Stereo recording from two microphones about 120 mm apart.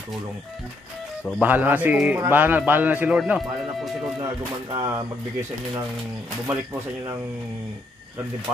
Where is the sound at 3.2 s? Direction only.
Centre (ahead or behind).